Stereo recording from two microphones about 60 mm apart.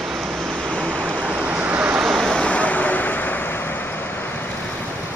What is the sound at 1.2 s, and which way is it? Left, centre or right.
Waves, right.